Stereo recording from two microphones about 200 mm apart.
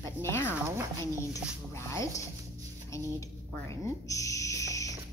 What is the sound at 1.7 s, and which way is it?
Speech, 15° left (ahead or behind).